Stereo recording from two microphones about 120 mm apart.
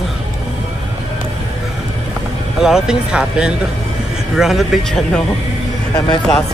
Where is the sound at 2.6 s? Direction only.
5° right (ahead or behind).